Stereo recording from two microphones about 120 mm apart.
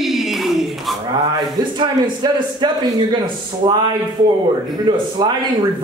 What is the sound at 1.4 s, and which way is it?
A man's voice, 40° right (ahead or behind).